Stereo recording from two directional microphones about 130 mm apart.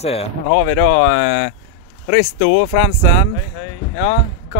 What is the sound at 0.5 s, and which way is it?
Speech, 65° left (ahead or behind).